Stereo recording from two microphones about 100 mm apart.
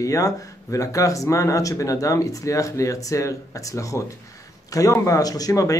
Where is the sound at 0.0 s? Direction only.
35° left (ahead or behind).